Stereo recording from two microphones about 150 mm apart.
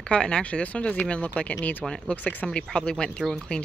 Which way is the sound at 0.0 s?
5° left (ahead or behind).